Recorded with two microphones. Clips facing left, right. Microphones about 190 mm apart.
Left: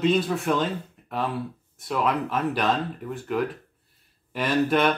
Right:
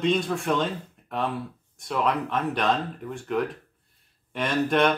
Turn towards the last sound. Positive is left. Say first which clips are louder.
# left 1 dB
turn(degrees=0)  # may be behind; listen again after turning